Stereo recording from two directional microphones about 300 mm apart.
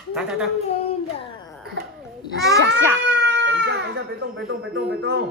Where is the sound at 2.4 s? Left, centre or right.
Right.